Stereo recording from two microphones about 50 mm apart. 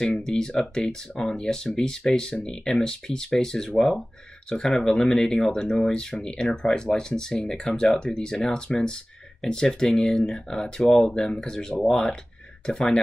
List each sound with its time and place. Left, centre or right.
0.0 s speech: centre